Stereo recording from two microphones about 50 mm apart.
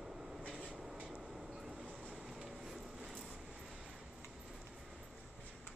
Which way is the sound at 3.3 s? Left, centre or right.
Centre.